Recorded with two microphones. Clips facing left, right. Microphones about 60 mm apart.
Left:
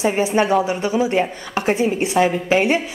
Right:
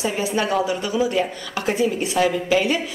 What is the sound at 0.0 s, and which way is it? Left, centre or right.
A woman's voice, left.